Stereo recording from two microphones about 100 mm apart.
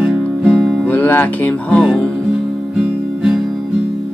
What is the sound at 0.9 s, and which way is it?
Music, 20° left (ahead or behind).